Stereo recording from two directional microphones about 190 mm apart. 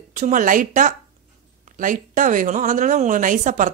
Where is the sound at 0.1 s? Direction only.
45° right (ahead or behind).